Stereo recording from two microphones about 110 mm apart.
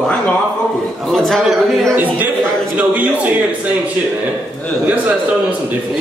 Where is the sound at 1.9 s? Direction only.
15° right (ahead or behind).